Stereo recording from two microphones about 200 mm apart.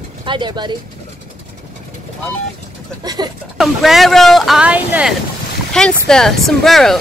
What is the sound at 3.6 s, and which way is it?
Speech, centre (ahead or behind).